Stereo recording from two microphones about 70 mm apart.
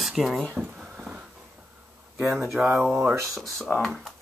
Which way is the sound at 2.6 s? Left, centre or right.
Centre.